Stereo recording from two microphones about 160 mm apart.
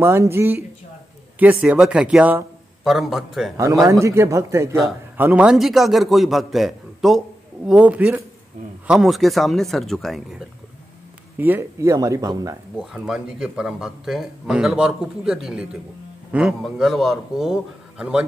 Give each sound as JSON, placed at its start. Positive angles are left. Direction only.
{"t": 0.0, "sound": "a man's voice", "side_deg": -15}
{"t": 3.8, "sound": "a man's voice", "side_deg": -20}
{"t": 11.3, "sound": "speech", "side_deg": -15}
{"t": 12.7, "sound": "a man's voice", "side_deg": -5}